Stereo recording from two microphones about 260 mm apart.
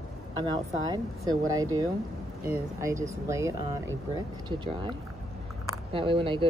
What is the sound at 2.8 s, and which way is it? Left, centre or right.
Speech, centre.